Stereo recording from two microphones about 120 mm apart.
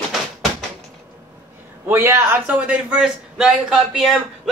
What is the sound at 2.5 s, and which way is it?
A man's voice, 10° right (ahead or behind).